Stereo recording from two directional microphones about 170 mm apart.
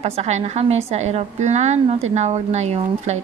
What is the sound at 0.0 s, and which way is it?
A woman's voice, 40° right (ahead or behind).